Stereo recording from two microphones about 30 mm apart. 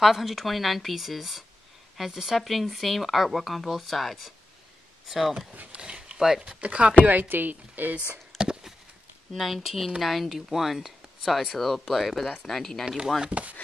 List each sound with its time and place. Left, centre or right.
0.0 s speech: centre
2.3 s speech: centre
5.5 s speech: right
5.8 s a sound: right
6.1 s speech: centre
6.6 s speech: right
7.1 s speech: right
8.3 s a sound: centre
9.3 s speech: centre
11.5 s speech: centre
12.8 s speech: centre
13.3 s speech: right